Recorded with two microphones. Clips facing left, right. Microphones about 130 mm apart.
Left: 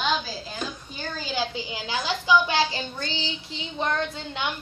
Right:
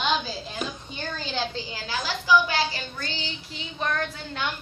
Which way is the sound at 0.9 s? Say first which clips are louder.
Left 2 dB; 5° left (ahead or behind).